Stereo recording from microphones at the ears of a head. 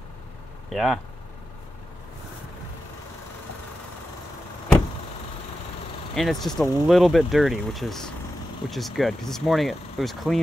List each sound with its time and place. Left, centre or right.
0.7 s speech: centre
6.1 s speech: centre